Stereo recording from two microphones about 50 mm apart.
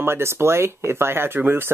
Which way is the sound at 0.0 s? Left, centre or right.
Right.